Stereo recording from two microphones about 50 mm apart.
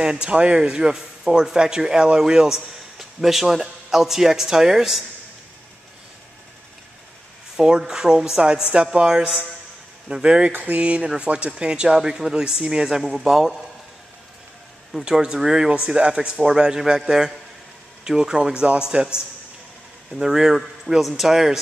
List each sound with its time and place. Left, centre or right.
0.0 s a man's voice: centre
7.5 s a man's voice: centre
10.5 s a sound: right
10.8 s a man's voice: right
15.0 s a man's voice: centre
20.2 s a man's voice: centre